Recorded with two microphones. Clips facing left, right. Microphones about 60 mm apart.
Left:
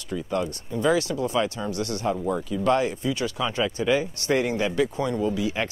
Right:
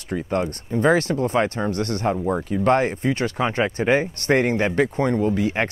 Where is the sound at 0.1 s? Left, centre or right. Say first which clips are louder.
Right 3 dB; right.